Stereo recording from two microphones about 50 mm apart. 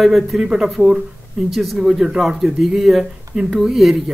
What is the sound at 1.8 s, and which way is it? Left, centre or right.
A man's voice, centre.